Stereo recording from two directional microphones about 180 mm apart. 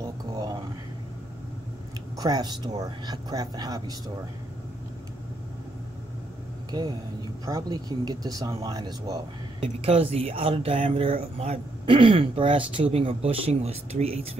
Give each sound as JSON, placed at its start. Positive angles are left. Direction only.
{"t": 0.0, "sound": "a sound", "side_deg": -20}
{"t": 2.1, "sound": "speech", "side_deg": -20}
{"t": 6.7, "sound": "speech", "side_deg": -25}
{"t": 9.8, "sound": "speech", "side_deg": -35}